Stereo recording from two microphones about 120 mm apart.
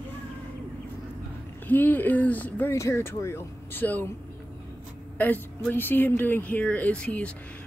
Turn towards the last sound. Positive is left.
turn(degrees=10)  # may be behind; listen again after turning